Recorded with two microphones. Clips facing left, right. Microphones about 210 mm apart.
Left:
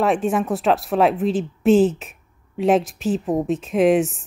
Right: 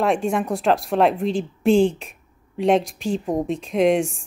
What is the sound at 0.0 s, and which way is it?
Speech, centre (ahead or behind).